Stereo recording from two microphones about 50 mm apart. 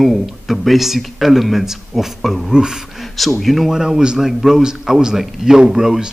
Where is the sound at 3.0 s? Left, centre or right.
Centre.